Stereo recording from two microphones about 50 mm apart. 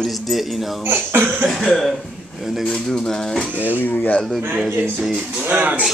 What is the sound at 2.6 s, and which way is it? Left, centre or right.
Mechanisms, centre.